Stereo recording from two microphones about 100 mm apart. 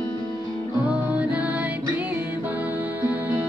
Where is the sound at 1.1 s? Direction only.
15° right (ahead or behind).